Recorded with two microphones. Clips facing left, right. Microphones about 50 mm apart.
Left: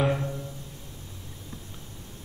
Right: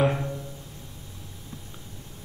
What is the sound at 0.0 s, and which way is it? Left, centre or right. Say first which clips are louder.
Music: right 2 dB; centre.